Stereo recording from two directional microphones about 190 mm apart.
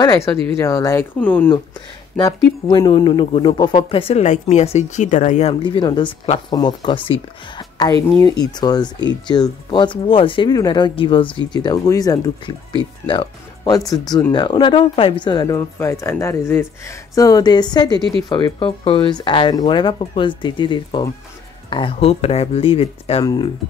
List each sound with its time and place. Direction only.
0.0 s speech: 20° left (ahead or behind)
2.1 s speech: 20° left (ahead or behind)